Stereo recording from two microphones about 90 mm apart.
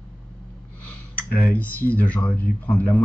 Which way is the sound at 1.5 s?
15° left (ahead or behind).